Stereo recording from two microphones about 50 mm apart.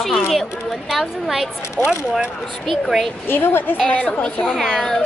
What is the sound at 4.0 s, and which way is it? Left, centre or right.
Speech, centre.